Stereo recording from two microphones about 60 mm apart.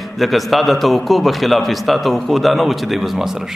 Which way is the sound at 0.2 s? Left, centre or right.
Centre.